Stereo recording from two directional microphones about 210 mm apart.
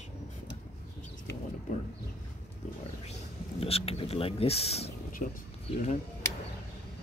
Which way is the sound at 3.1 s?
30° left (ahead or behind).